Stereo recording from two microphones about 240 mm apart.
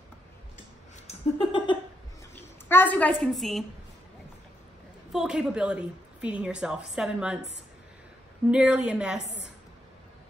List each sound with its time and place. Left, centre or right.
1.0 s a sound: left
2.3 s a woman's voice: centre
5.1 s a woman's voice: centre
8.5 s a woman's voice: centre